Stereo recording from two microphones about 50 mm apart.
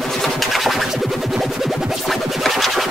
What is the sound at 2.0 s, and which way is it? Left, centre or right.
Music, centre.